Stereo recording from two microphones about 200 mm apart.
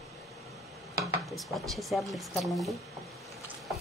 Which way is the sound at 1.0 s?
Centre (ahead or behind).